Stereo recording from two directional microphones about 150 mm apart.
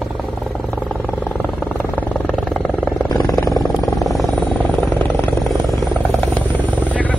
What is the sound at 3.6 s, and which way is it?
Vehicle, centre (ahead or behind).